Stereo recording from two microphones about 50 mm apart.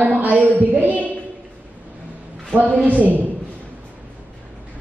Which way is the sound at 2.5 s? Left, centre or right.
Right.